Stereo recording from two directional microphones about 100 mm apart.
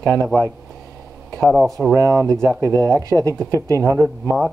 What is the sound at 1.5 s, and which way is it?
Speech, centre (ahead or behind).